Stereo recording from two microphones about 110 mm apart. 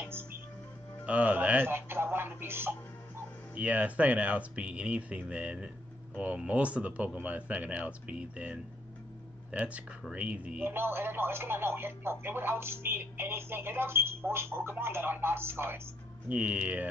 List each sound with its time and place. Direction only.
1.0 s speech: 15° right (ahead or behind)